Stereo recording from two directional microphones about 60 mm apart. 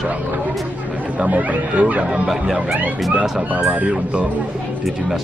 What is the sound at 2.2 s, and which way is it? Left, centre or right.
Speech, centre.